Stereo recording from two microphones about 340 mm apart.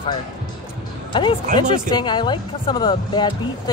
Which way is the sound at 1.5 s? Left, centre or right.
Centre.